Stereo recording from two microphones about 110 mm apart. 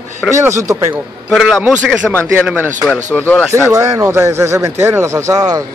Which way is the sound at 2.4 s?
20° right (ahead or behind).